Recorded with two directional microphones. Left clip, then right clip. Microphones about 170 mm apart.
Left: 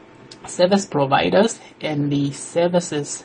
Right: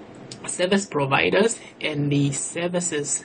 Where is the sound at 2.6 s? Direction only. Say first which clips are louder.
Left 9 dB; 20° left (ahead or behind).